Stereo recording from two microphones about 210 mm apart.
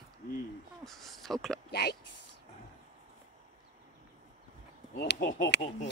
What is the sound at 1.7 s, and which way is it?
Speech, 50° left (ahead or behind).